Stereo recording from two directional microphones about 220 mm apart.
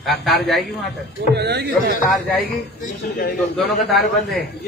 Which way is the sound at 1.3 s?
45° right (ahead or behind).